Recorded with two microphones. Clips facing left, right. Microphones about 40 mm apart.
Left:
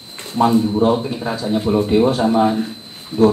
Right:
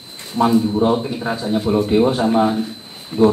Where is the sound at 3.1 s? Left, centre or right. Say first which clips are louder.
Even; right.